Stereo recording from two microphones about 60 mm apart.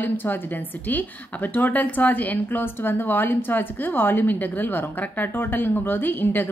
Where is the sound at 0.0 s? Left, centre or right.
Left.